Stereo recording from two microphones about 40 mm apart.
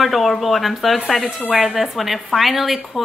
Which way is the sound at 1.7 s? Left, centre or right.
Centre.